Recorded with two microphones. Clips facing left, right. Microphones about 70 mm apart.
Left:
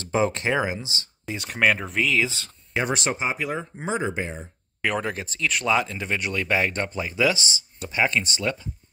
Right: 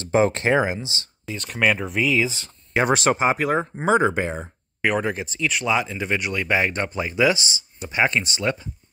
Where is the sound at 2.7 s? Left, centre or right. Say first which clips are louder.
Right 6 dB; right.